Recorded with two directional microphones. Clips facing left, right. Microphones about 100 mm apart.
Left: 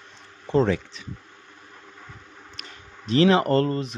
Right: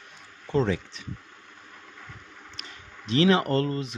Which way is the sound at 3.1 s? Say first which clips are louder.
Left 3 dB; 35° left (ahead or behind).